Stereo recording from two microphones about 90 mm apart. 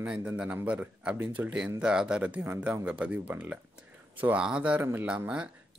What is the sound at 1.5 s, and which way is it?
Speech, 10° right (ahead or behind).